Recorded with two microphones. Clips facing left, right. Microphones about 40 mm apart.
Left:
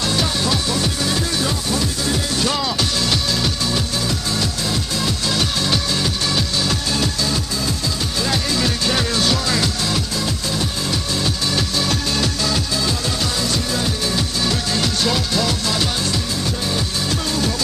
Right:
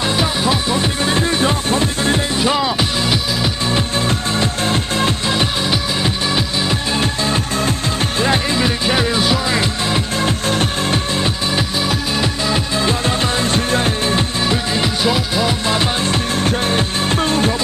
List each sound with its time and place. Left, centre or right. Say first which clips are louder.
0.1 s music: right 3 dB; right
2.3 s music: right 4 dB; right
3.7 s music: right 4 dB; right
5.3 s music: right 2 dB; right
11.1 s music: right 3 dB; right
15.6 s music: right 4 dB; right
16.3 s music: right 6 dB; right